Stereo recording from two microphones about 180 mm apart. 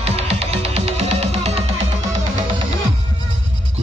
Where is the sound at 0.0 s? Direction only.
35° right (ahead or behind).